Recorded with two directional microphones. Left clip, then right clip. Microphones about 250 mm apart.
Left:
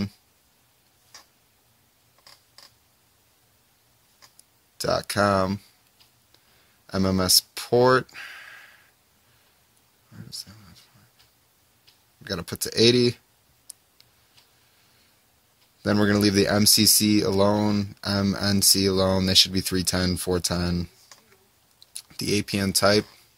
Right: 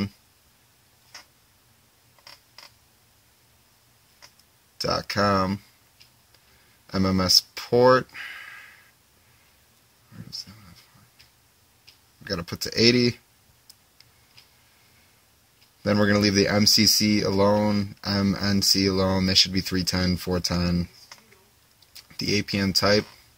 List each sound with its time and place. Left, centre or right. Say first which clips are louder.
4.8 s speech: left 1 dB; left
6.9 s speech: right 1 dB; left
12.3 s speech: right 1 dB; left
15.8 s speech: even; left
21.9 s speech: even; left